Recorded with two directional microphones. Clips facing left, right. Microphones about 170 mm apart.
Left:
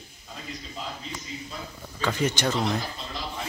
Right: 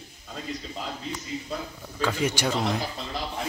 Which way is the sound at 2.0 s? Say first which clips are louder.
Even; 5° right (ahead or behind).